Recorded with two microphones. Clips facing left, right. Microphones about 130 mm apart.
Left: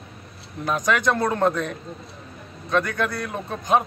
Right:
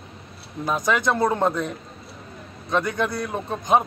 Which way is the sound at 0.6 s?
10° right (ahead or behind).